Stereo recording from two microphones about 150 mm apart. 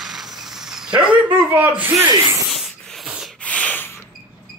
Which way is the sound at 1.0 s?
10° right (ahead or behind).